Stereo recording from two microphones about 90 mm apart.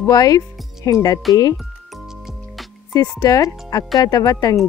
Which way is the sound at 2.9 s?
45° left (ahead or behind).